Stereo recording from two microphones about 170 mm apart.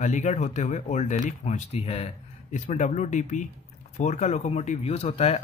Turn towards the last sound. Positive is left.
turn(degrees=35)  # may be behind; listen again after turning